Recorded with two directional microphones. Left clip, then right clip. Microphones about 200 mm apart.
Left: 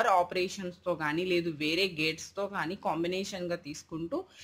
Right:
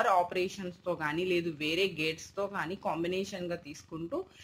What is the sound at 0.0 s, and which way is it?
Speech, 5° left (ahead or behind).